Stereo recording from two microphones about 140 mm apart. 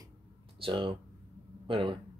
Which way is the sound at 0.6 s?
40° right (ahead or behind).